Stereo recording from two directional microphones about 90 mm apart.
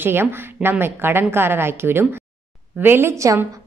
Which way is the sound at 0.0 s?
25° right (ahead or behind).